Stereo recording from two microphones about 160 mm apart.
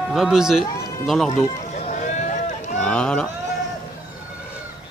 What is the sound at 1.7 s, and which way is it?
Rowboat, 45° left (ahead or behind).